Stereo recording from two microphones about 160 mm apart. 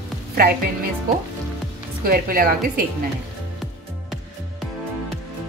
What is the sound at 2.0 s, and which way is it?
Speech, 65° right (ahead or behind).